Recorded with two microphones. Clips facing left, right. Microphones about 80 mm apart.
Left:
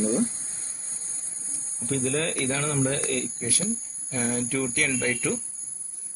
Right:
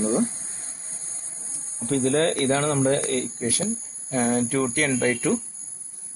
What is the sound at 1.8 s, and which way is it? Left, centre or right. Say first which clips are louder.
Speech: right 6 dB; right.